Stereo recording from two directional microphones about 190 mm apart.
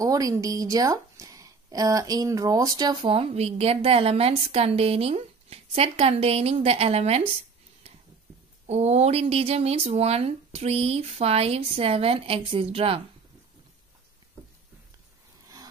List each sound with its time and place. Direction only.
0.0 s speech: 20° right (ahead or behind); by 7.2 s 35° right (ahead or behind)
8.6 s speech: 35° right (ahead or behind)
15.4 s a sound: 20° right (ahead or behind)